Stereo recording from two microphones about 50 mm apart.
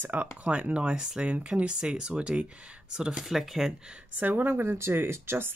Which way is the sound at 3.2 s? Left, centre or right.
Centre.